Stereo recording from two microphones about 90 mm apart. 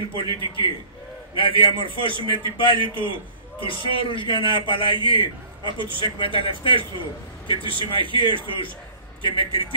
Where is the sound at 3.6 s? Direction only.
70° left (ahead or behind).